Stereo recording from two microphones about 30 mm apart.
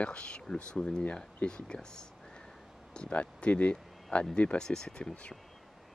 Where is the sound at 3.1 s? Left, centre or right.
Left.